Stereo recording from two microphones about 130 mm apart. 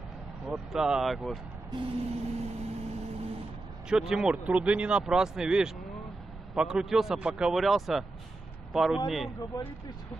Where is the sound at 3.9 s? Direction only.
5° right (ahead or behind).